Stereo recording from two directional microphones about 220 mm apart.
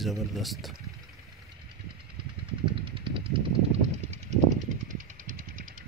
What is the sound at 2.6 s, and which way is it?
Vehicle, 25° right (ahead or behind).